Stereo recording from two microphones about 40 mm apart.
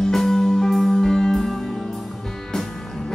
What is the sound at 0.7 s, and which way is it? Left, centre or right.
Music, centre.